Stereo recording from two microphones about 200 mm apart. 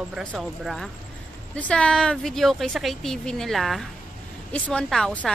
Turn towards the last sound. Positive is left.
turn(degrees=0)  # may be behind; listen again after turning